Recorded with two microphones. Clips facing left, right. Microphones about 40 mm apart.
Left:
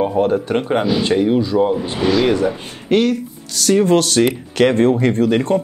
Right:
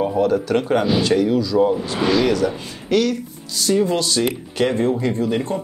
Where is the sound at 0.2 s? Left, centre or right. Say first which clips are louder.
Left 1 dB; left.